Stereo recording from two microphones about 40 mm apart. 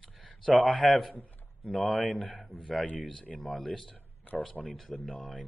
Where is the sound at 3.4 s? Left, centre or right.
Centre.